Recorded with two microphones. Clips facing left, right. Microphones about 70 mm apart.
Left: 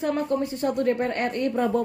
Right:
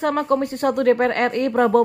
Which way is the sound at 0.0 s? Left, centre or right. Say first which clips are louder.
Right 5 dB; right.